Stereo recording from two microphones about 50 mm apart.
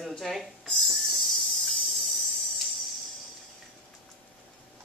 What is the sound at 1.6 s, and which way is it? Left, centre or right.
Cricket, centre.